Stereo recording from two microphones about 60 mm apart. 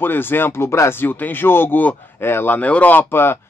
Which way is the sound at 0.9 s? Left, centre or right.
Left.